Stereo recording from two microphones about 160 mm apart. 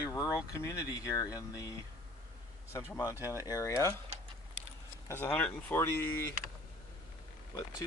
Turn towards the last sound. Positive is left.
turn(degrees=15)  # may be behind; listen again after turning